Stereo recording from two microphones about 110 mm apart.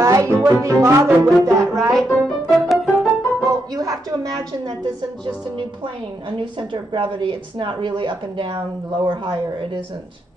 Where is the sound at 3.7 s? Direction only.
35° right (ahead or behind).